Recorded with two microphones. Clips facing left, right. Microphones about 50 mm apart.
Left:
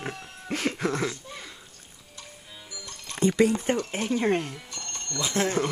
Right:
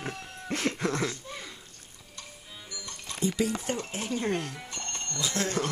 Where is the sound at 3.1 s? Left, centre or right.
Left.